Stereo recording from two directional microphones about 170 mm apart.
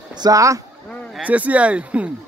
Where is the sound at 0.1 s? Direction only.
20° right (ahead or behind).